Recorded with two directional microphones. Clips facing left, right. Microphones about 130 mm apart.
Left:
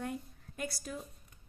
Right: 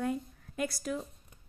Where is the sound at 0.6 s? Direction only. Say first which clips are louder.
Right 6 dB; 90° right.